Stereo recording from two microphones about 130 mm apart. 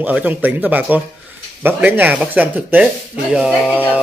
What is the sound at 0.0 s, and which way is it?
A man's voice, 10° right (ahead or behind).